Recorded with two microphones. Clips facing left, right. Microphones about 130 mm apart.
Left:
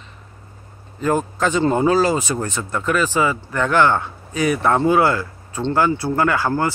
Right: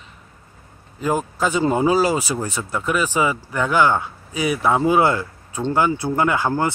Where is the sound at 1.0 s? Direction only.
10° right (ahead or behind).